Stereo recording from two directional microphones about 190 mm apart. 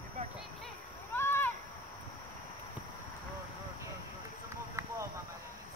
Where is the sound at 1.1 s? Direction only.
10° left (ahead or behind).